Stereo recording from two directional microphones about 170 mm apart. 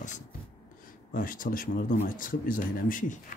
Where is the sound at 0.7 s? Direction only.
55° left (ahead or behind).